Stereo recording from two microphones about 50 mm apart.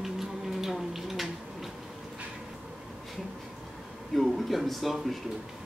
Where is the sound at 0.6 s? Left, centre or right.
Centre.